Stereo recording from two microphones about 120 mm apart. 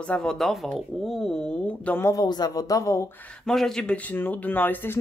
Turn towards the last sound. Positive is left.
turn(degrees=15)  # may be behind; listen again after turning